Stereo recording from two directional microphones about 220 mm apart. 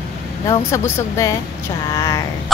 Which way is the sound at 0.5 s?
10° left (ahead or behind).